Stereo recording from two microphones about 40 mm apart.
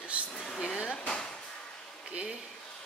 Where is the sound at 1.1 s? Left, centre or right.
Centre.